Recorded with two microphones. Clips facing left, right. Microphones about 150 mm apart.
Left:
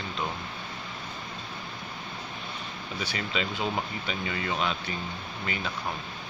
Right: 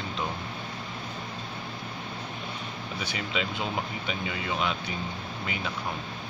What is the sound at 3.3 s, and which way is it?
Speech, 10° right (ahead or behind).